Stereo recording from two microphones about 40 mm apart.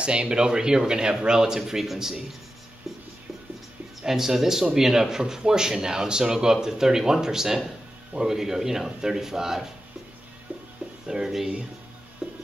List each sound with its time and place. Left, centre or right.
0.0 s speech: right
4.0 s speech: centre
10.5 s music: right
11.1 s speech: centre
12.2 s music: centre